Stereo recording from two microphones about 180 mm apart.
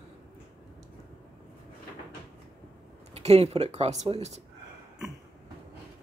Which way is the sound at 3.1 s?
35° right (ahead or behind).